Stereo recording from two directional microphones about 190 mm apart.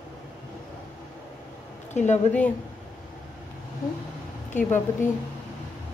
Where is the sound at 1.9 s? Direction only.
35° left (ahead or behind).